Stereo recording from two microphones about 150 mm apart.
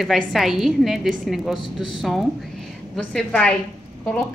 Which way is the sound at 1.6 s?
30° left (ahead or behind).